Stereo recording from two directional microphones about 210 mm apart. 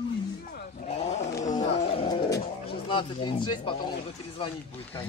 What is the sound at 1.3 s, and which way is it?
Roaring cats, 35° left (ahead or behind).